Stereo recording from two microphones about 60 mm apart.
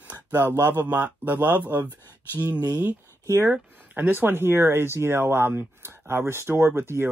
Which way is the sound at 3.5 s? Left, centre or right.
Right.